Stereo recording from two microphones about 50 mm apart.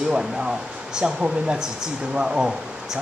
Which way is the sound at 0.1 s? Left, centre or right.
Centre.